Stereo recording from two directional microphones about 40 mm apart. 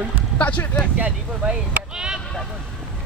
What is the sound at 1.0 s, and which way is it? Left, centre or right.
Speech, right.